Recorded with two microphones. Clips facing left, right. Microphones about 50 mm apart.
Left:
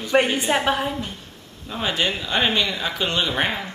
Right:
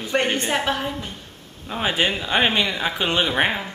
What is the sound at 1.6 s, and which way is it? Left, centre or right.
Speech, centre.